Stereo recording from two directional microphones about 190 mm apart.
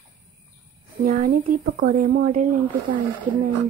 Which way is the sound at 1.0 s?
45° right (ahead or behind).